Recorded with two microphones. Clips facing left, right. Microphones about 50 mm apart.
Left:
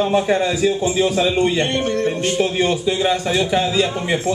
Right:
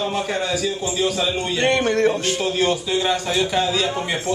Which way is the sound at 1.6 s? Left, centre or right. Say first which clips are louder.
Right 2 dB; right.